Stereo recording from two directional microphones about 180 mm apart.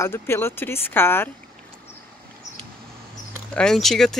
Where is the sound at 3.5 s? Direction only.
5° left (ahead or behind).